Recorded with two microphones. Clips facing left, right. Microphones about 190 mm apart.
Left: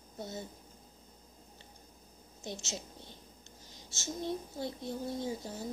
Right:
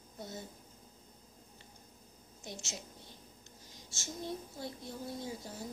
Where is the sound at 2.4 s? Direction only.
25° left (ahead or behind).